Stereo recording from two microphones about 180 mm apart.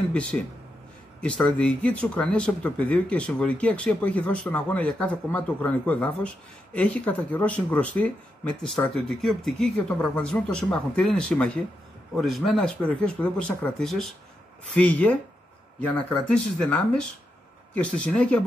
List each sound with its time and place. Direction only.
0.1 s speech: 5° left (ahead or behind)